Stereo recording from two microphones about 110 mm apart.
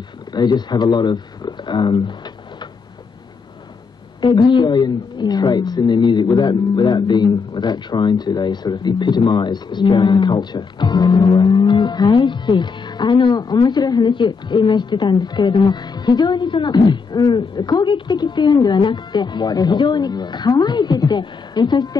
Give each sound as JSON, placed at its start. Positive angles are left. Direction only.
{"t": 0.3, "sound": "speech", "side_deg": 40}
{"t": 4.2, "sound": "a woman's voice", "side_deg": 45}